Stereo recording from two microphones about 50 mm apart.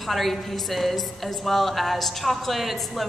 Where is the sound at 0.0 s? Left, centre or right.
Centre.